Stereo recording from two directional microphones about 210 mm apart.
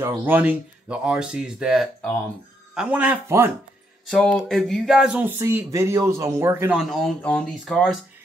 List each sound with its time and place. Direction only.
0.0 s speech: 10° right (ahead or behind)
4.1 s speech: 5° left (ahead or behind)